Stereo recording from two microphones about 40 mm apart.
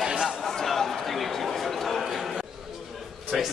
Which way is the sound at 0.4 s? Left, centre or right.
Centre.